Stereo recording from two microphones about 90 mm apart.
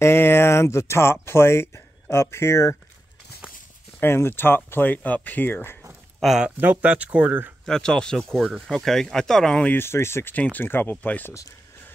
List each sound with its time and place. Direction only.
0.0 s speech: 25° left (ahead or behind)
4.0 s speech: 25° left (ahead or behind)
6.2 s speech: 5° right (ahead or behind)
6.6 s speech: 15° right (ahead or behind)
7.6 s speech: 5° left (ahead or behind)
9.6 s speech: 20° left (ahead or behind)
10.3 s speech: 20° left (ahead or behind)